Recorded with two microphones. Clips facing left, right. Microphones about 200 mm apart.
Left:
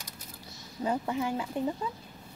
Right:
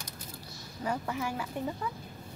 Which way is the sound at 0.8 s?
20° left (ahead or behind).